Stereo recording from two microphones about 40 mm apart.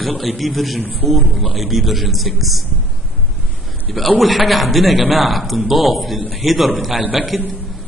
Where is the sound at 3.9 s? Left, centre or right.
Centre.